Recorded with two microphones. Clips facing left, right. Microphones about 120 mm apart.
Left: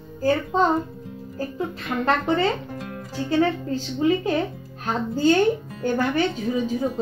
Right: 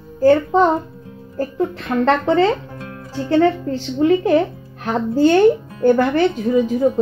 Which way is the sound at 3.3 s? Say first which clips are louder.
Right 6 dB; 75° right (ahead or behind).